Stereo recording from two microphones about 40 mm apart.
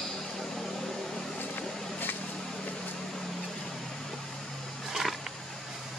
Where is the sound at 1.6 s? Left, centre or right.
Left.